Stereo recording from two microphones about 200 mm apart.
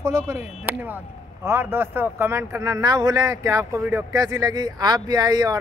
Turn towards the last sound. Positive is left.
turn(degrees=-20)  # may be behind; listen again after turning